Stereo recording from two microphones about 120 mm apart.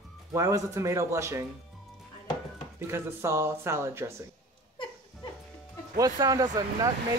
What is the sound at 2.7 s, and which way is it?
Speech, 20° right (ahead or behind).